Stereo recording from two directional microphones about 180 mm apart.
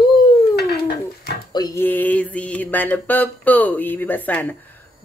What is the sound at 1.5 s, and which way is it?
Mantra, 15° left (ahead or behind).